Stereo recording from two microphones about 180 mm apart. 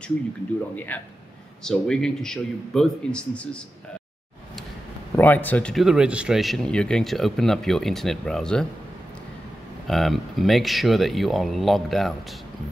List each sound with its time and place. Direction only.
0.7 s a man's voice: 10° left (ahead or behind)
5.1 s speech: 10° left (ahead or behind)
9.8 s speech: centre (ahead or behind)